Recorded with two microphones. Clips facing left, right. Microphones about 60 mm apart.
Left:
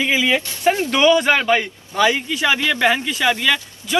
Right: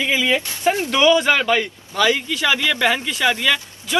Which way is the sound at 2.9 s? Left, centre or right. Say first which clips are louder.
Left 1 dB; centre.